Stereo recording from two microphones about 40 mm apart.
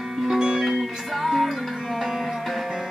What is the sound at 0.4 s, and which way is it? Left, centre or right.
Music, centre.